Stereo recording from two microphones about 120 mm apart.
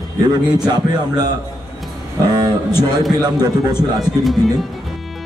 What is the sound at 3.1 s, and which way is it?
Speech, 35° right (ahead or behind).